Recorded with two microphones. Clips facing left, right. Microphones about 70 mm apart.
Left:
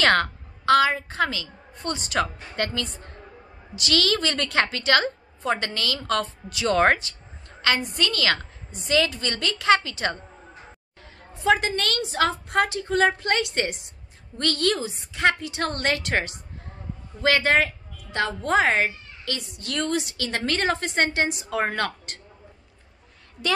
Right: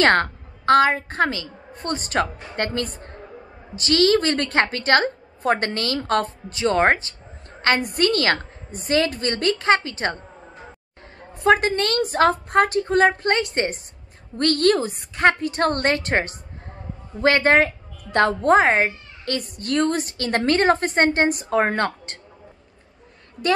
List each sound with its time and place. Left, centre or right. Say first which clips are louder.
0.0 s a woman's voice: right 3 dB; right
7.6 s a woman's voice: right 4 dB; right
11.3 s a woman's voice: right 4 dB; right
18.1 s a woman's voice: right 8 dB; right
18.5 s a woman's voice: right 3 dB; right